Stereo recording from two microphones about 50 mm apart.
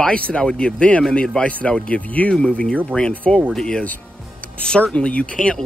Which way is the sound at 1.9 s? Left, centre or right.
Left.